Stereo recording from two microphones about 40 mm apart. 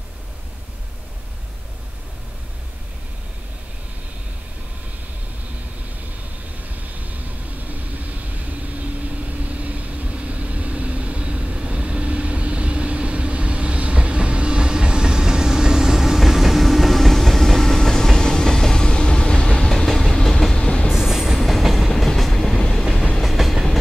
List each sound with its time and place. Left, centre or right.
7.1 s vehicle: right; by 19.9 s centre
19.9 s train: centre
20.5 s train: left
20.9 s train: centre